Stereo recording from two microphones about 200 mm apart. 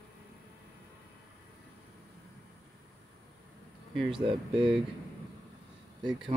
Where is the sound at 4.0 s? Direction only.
25° right (ahead or behind).